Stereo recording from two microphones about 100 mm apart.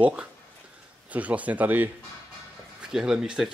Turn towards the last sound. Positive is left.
turn(degrees=-5)  # may be behind; listen again after turning